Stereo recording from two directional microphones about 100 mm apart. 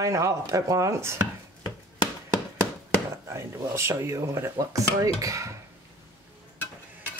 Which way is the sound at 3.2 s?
30° right (ahead or behind).